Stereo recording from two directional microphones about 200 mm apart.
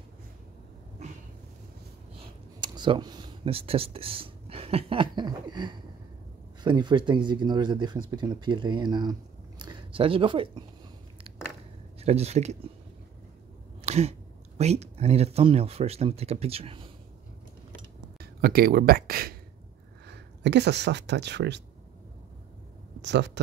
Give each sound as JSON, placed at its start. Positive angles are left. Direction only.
{"t": 2.1, "sound": "speech", "side_deg": -20}
{"t": 12.0, "sound": "speech", "side_deg": -30}
{"t": 13.8, "sound": "a sound", "side_deg": -35}
{"t": 14.6, "sound": "speech", "side_deg": -35}
{"t": 18.2, "sound": "speech", "side_deg": -50}
{"t": 23.0, "sound": "speech", "side_deg": -60}